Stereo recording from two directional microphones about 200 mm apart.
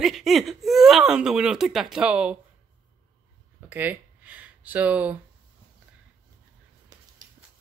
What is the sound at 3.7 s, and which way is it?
Speech, 10° right (ahead or behind).